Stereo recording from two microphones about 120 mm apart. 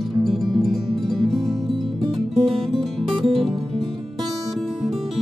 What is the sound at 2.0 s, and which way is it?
Music, 55° right (ahead or behind).